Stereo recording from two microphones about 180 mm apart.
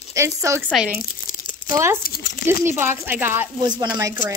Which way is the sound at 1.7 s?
15° right (ahead or behind).